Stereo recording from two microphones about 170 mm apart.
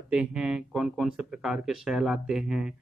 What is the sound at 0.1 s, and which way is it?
Speech, 5° right (ahead or behind).